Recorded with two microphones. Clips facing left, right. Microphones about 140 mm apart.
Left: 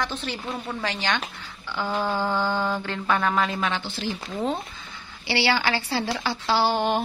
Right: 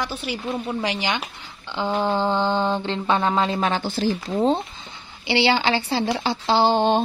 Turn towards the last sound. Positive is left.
turn(degrees=-25)  # may be behind; listen again after turning